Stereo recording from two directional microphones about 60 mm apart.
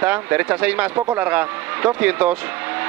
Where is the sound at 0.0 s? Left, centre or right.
Right.